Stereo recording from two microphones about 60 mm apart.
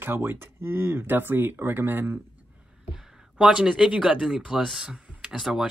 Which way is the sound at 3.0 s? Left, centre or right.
Centre.